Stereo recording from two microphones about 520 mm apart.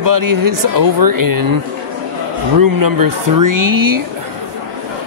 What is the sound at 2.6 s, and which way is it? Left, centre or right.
Speech, right.